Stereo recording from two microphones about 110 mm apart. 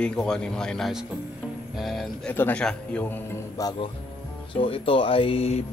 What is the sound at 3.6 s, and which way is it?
Speech, 30° left (ahead or behind).